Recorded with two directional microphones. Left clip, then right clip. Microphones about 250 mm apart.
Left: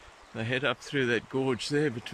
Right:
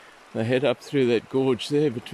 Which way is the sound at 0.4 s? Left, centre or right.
Centre.